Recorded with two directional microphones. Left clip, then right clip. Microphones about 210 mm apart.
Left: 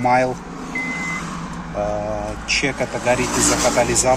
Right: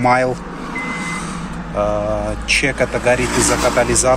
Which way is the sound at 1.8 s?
5° left (ahead or behind).